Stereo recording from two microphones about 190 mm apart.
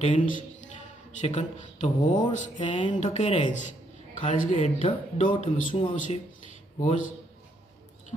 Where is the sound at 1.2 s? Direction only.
35° left (ahead or behind).